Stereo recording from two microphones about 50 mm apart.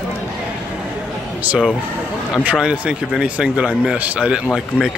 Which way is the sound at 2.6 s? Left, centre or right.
Centre.